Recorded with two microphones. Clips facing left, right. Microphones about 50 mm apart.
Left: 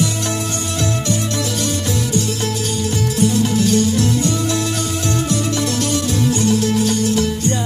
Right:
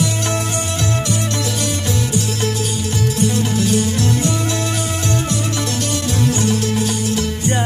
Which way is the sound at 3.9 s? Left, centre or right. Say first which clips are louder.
Left 1 dB; right.